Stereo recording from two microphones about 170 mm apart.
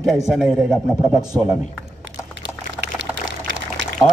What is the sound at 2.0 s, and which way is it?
Pour, 90° right.